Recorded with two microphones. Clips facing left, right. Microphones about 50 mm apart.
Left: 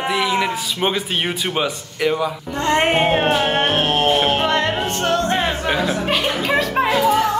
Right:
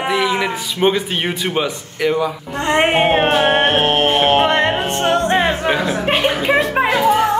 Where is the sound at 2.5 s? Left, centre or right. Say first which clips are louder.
Right 2 dB; centre.